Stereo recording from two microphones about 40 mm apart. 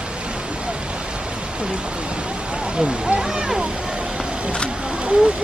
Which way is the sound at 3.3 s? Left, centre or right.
Centre.